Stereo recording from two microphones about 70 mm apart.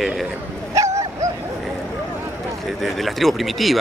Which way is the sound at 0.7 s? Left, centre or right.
Right.